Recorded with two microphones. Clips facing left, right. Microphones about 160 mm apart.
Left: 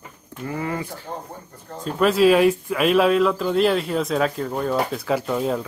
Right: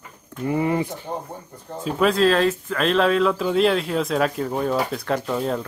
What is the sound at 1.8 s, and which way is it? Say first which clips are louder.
Speech: left 2 dB; centre (ahead or behind).